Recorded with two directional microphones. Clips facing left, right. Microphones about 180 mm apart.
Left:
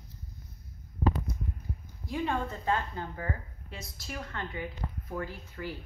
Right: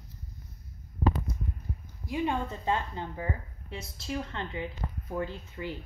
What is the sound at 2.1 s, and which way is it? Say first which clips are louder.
A woman's voice: right 1 dB; 20° right (ahead or behind).